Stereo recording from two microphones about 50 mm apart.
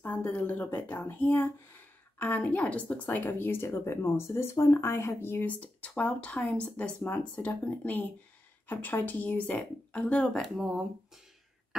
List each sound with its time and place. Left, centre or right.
0.0 s speech: left
5.4 s speech: left
8.6 s a woman's voice: left
9.6 s speech: left